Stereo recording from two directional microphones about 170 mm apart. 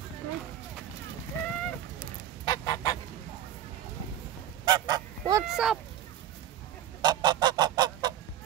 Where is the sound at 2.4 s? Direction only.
25° left (ahead or behind).